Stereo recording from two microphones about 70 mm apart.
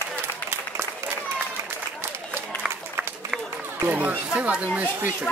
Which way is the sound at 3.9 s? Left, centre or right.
Right.